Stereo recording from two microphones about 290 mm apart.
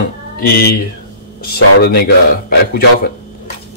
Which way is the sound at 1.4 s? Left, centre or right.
Left.